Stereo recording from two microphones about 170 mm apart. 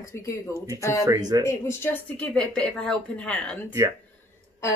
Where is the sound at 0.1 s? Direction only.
15° left (ahead or behind).